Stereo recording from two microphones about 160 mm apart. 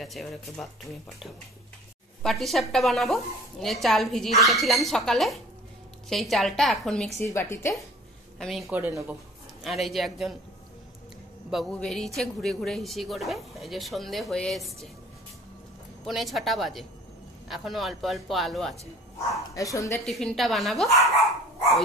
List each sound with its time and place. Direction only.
0.0 s a woman's voice: centre (ahead or behind)
2.2 s a woman's voice: centre (ahead or behind)
8.4 s a woman's voice: centre (ahead or behind)
8.6 s a woman's voice: 15° right (ahead or behind)
9.6 s a woman's voice: centre (ahead or behind)
11.5 s a woman's voice: 5° left (ahead or behind)
16.1 s a woman's voice: centre (ahead or behind)
19.5 s speech: 20° left (ahead or behind)
20.1 s a woman's voice: centre (ahead or behind)